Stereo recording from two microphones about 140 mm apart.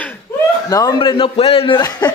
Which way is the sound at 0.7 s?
25° left (ahead or behind).